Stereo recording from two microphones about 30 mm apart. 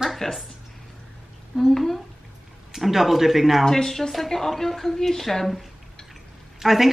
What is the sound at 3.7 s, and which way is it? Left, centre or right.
A woman's voice, centre.